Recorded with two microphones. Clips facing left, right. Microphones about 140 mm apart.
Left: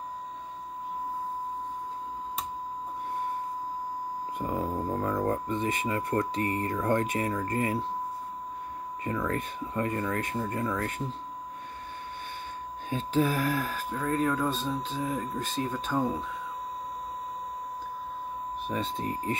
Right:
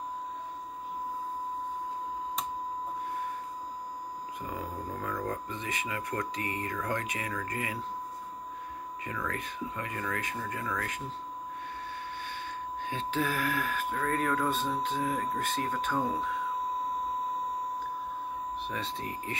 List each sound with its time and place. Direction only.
4.8 s speech: 25° left (ahead or behind)
9.0 s speech: 30° left (ahead or behind)
12.9 s speech: 40° left (ahead or behind)
13.9 s speech: 20° left (ahead or behind)
18.9 s speech: 35° left (ahead or behind)